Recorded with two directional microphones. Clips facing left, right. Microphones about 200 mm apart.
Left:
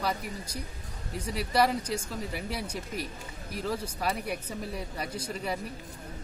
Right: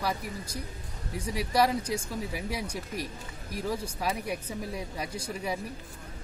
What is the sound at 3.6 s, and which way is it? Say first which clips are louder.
Speech: even; 10° right (ahead or behind).